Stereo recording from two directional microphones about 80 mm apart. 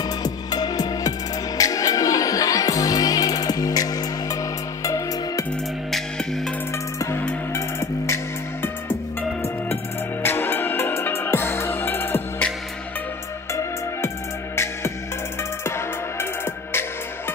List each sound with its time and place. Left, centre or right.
0.2 s music: left
4.8 s music: left
5.9 s music: centre
7.5 s music: left
10.2 s music: left
13.5 s music: left